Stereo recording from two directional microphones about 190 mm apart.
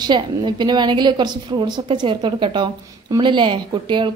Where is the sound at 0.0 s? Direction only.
25° right (ahead or behind).